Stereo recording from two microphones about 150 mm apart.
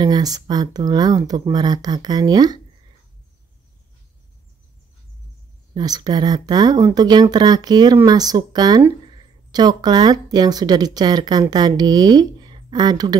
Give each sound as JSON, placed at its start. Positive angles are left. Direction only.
{"t": 0.0, "sound": "speech", "side_deg": -25}
{"t": 5.8, "sound": "speech", "side_deg": -25}